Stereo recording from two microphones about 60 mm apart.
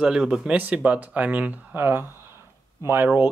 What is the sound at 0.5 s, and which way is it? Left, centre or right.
Speech, right.